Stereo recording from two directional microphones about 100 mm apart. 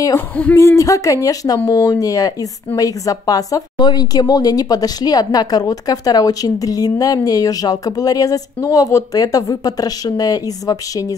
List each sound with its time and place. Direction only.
0.6 s speech: 30° left (ahead or behind)